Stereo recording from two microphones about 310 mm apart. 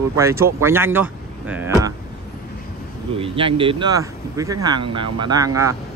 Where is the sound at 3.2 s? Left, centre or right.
Centre.